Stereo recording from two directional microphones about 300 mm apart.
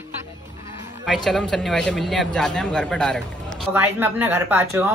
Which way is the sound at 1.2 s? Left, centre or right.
Centre.